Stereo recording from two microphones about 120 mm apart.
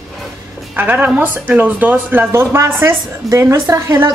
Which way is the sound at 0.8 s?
15° right (ahead or behind).